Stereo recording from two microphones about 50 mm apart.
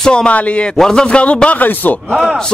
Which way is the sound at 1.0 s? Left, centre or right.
Left.